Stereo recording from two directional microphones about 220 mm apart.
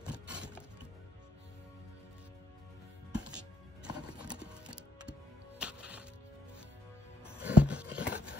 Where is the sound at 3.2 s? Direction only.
20° right (ahead or behind).